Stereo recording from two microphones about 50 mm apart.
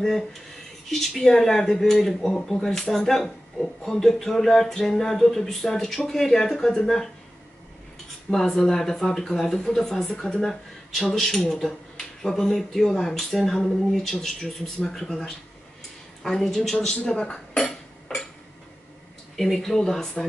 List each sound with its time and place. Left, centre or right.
0.0 s speech: centre
8.3 s speech: centre
16.9 s speech: centre
18.1 s dishes: centre
19.3 s speech: centre